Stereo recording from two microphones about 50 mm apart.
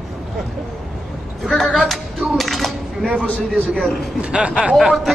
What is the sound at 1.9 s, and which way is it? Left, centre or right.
Cutlery, centre.